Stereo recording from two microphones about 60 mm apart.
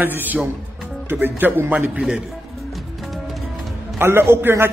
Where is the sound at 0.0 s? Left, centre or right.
Right.